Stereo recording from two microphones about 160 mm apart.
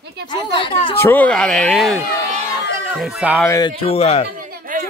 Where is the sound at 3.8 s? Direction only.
40° left (ahead or behind).